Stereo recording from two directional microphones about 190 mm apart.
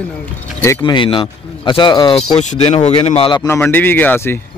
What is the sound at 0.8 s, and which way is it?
Speech, 25° left (ahead or behind).